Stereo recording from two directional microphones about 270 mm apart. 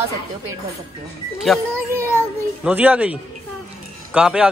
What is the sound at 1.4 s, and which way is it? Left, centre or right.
A man's voice, centre.